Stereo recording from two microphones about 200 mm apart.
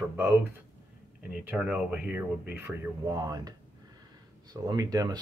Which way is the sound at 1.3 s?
5° right (ahead or behind).